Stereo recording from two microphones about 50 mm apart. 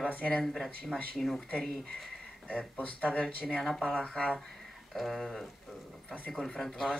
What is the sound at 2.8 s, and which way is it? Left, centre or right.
Speech, left.